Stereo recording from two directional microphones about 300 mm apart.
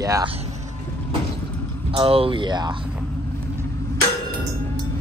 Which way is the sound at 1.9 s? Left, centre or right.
Centre.